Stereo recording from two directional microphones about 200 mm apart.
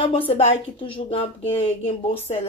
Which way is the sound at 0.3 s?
30° left (ahead or behind).